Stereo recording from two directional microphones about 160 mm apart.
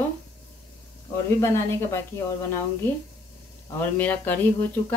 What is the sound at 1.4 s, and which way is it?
Speech, 15° left (ahead or behind).